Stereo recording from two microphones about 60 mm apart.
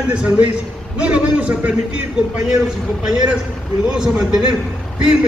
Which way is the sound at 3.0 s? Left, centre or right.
Centre.